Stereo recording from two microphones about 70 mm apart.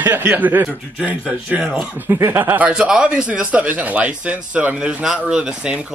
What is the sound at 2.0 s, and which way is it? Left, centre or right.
Speech, right.